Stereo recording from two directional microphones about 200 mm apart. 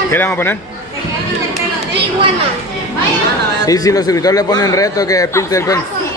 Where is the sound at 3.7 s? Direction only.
20° left (ahead or behind).